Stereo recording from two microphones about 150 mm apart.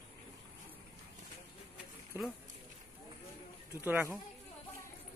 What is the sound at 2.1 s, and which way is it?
Speech, 15° right (ahead or behind).